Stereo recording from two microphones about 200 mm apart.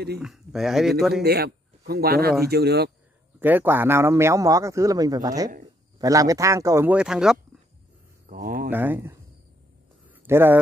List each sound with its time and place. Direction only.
0.2 s speech: centre (ahead or behind)
1.2 s speech: 50° right (ahead or behind)
3.3 s speech: 10° right (ahead or behind)
8.3 s speech: 45° right (ahead or behind)
8.6 s speech: 10° right (ahead or behind)
10.2 s a man's voice: 10° right (ahead or behind)